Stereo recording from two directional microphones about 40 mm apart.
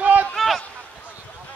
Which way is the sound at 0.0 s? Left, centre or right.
Right.